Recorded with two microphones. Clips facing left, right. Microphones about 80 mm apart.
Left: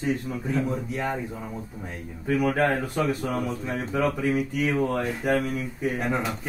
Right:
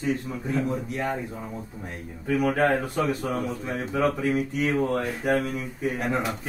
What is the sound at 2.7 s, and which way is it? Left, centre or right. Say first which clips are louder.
Speech: even; right.